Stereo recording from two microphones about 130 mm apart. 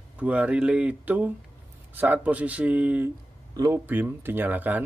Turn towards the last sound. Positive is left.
turn(degrees=-15)  # may be behind; listen again after turning